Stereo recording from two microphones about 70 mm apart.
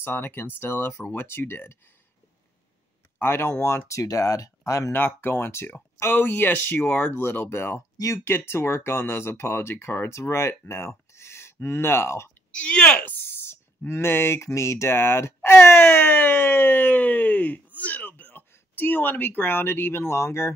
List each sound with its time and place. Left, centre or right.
0.0 s speech: left
3.2 s speech: left
4.0 s speech: left
4.9 s speech: left
12.4 s speech: centre
13.5 s speech: left